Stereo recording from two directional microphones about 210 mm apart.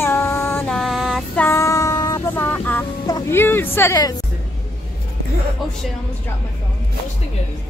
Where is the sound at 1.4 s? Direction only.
15° left (ahead or behind).